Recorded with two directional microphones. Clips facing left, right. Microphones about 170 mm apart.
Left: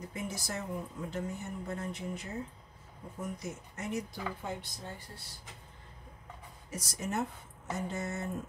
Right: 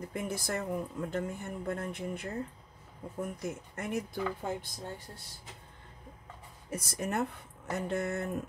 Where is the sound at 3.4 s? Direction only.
55° right (ahead or behind).